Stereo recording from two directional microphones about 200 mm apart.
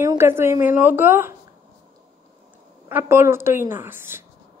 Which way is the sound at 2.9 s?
10° right (ahead or behind).